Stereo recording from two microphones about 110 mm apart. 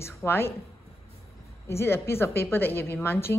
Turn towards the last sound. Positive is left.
turn(degrees=20)  # may be behind; listen again after turning